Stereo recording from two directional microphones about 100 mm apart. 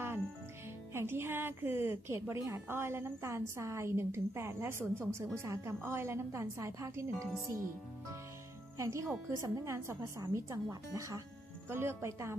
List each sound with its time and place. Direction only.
0.9 s a woman's voice: 25° right (ahead or behind)
8.7 s a woman's voice: 30° right (ahead or behind)